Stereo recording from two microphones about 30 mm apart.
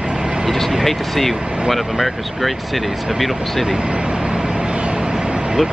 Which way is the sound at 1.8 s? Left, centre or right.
Centre.